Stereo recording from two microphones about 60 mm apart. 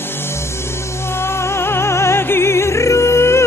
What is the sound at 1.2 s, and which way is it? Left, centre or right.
Music, left.